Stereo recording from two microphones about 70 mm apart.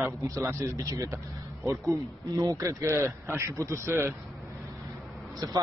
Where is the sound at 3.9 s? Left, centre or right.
Right.